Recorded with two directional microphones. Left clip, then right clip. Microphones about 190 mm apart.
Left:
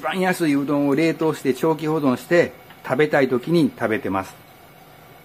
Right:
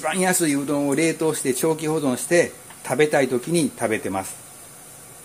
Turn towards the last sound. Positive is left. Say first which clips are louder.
# left 1 dB
turn(degrees=0)  # may be behind; listen again after turning